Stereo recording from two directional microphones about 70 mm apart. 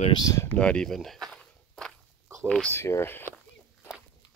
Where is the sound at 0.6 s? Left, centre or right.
Centre.